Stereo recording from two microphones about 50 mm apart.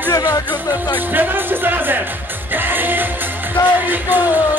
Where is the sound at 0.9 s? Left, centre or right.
Right.